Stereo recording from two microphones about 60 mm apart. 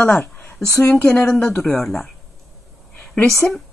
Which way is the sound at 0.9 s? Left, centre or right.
Left.